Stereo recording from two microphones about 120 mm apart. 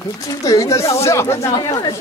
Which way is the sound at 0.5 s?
25° left (ahead or behind).